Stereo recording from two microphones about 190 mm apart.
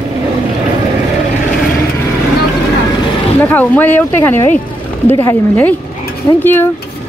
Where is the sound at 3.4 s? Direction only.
10° left (ahead or behind).